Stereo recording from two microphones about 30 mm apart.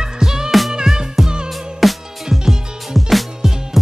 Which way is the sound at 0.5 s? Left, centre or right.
Centre.